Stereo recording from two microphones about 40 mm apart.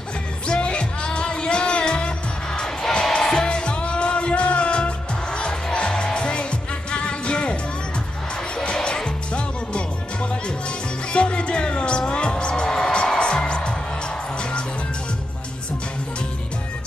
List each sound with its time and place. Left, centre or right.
0.5 s music: left
8.6 s music: left